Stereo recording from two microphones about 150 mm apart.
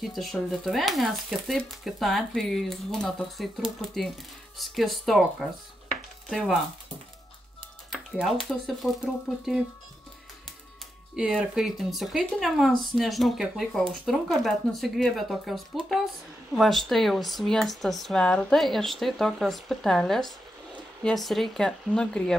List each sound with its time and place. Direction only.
0.0 s speech: centre (ahead or behind)
7.9 s speech: centre (ahead or behind)
11.1 s speech: 5° right (ahead or behind)